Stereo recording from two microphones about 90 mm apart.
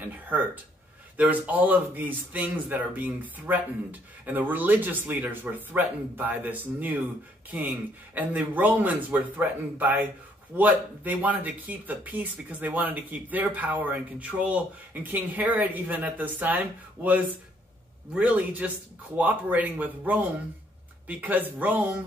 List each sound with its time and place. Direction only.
0.0 s speech: 20° right (ahead or behind)